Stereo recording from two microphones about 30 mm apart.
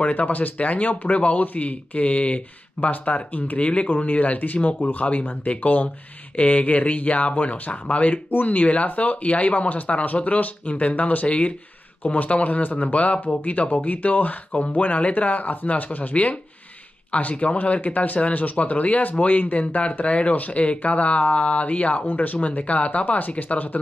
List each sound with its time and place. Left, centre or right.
0.0 s speech: left
1.4 s speech: left
2.1 s speech: left
4.0 s speech: left
6.3 s speech: left
8.3 s speech: left
8.8 s speech: left
11.2 s speech: left
12.0 s speech: left
19.8 s speech: left
22.0 s speech: left